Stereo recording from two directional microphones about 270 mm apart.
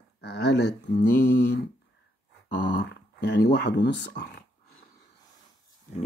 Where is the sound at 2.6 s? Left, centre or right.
Left.